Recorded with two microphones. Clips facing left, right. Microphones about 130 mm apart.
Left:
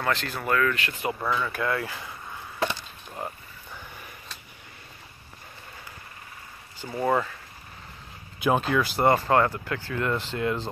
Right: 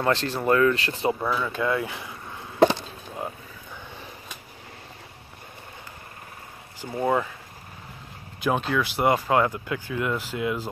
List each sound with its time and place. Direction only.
0.0 s speech: 30° right (ahead or behind)
1.2 s speech: 5° right (ahead or behind)
1.5 s speech: 15° right (ahead or behind)
7.0 s speech: 10° right (ahead or behind)
8.4 s speech: centre (ahead or behind)